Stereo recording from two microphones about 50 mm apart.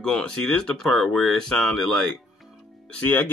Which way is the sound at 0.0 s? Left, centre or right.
Centre.